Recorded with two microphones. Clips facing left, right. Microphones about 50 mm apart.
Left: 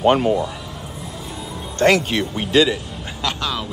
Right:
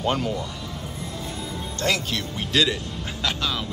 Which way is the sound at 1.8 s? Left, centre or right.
Left.